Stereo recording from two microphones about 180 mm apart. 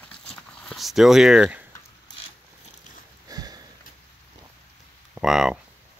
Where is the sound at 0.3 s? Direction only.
5° left (ahead or behind).